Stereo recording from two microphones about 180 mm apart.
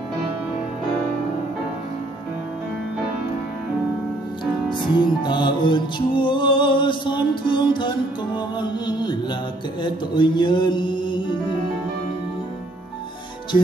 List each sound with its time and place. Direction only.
4.6 s music: 25° left (ahead or behind)
8.5 s mantra: 25° left (ahead or behind)